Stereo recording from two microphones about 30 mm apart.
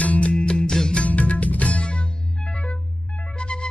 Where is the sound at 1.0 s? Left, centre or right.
Left.